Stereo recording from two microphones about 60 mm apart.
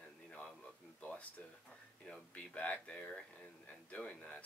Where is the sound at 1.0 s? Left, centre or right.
Left.